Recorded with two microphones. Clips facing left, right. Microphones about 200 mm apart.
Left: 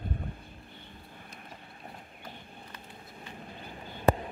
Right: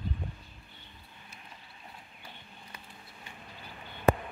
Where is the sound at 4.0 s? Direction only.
35° left (ahead or behind).